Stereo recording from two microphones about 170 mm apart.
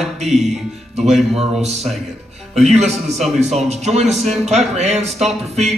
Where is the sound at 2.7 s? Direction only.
40° right (ahead or behind).